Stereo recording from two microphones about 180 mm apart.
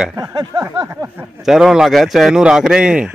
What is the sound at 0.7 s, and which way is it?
Speech, 15° right (ahead or behind).